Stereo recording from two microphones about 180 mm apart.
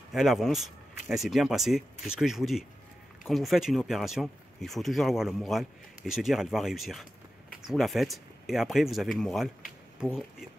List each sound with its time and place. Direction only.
0.1 s speech: centre (ahead or behind)